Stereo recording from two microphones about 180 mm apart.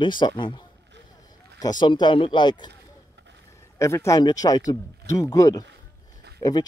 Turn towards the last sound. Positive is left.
turn(degrees=20)  # may be behind; listen again after turning